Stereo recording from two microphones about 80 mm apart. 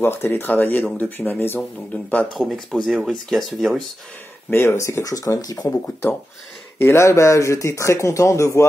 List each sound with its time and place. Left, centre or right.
0.0 s speech: left
2.3 s speech: centre
4.5 s speech: left
6.8 s speech: left